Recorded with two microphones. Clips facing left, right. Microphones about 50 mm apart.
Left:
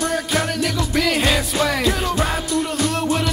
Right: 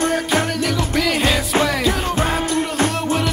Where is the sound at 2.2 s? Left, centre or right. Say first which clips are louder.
Right 2 dB; right.